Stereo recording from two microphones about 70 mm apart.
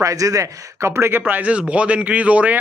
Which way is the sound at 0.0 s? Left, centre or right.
Right.